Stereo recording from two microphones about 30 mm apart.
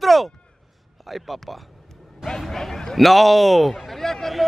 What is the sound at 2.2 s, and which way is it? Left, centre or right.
Speech, centre.